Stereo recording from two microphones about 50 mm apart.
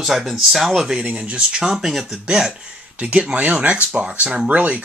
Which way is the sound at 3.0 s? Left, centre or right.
Right.